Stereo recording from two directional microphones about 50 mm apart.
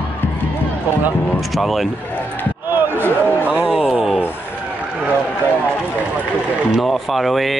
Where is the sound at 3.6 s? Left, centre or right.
Centre.